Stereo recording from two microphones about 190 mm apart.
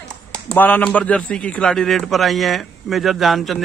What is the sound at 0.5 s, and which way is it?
A man's voice, 10° left (ahead or behind).